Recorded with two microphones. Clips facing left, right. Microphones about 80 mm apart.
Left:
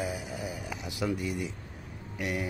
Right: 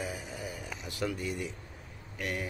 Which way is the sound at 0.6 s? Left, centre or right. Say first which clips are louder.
Left 2 dB; centre.